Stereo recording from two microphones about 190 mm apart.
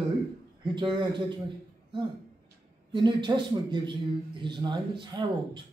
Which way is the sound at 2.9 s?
25° right (ahead or behind).